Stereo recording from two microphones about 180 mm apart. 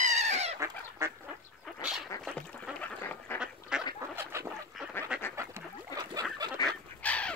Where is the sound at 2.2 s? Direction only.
5° left (ahead or behind).